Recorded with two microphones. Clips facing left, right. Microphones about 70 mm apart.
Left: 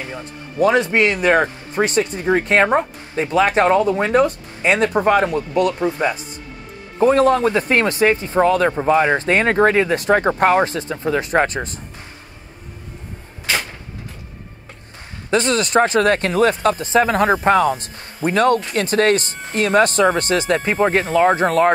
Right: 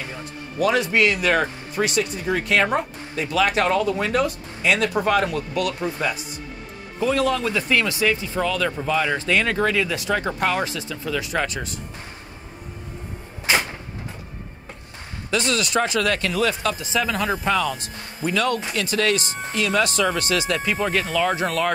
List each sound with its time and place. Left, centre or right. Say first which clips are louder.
0.2 s speech: left 5 dB; left
7.0 s speech: left 7 dB; left
15.3 s speech: left 6 dB; left